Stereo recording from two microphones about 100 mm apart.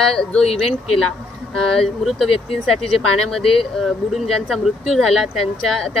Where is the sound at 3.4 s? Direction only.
65° left (ahead or behind).